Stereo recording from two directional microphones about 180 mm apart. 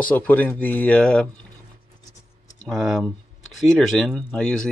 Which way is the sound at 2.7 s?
Centre (ahead or behind).